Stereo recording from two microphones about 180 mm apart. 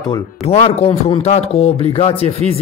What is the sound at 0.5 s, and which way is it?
Speech, 35° left (ahead or behind).